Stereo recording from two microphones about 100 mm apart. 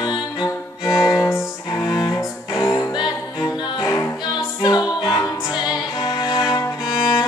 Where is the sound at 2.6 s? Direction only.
35° left (ahead or behind).